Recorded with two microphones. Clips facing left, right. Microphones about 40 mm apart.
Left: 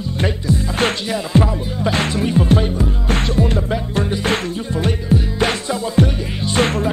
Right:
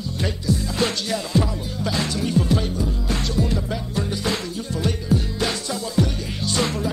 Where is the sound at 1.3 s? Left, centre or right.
Left.